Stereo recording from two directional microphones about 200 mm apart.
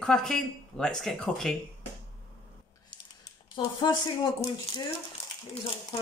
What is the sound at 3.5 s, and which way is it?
Speech, 20° left (ahead or behind).